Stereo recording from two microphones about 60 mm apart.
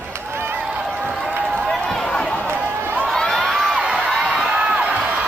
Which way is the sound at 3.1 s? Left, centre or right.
Centre.